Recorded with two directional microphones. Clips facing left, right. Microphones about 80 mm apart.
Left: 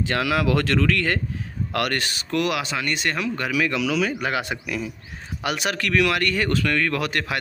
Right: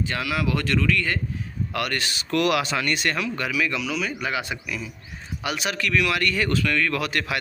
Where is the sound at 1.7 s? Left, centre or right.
Left.